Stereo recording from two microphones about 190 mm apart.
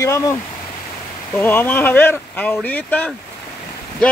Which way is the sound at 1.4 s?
10° left (ahead or behind).